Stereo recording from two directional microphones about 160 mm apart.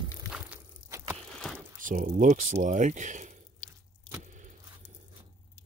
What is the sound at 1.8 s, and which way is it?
Speech, 60° right (ahead or behind).